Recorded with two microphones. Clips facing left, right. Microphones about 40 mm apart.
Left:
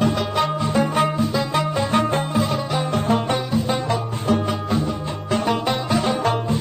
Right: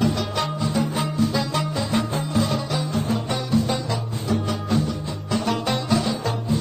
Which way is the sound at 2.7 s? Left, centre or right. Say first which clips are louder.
Left 4 dB; left.